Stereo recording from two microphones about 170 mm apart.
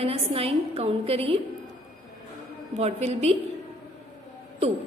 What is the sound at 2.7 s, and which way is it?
Speech, 40° right (ahead or behind).